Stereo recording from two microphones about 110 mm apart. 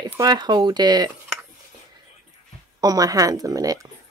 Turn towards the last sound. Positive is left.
turn(degrees=-35)  # may be behind; listen again after turning